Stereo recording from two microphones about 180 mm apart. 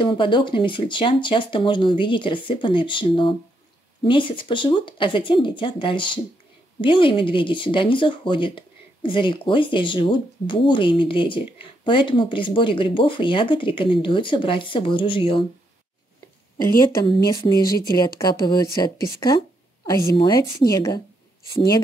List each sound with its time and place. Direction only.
0.0 s speech: 25° left (ahead or behind)
17.0 s speech: 20° left (ahead or behind)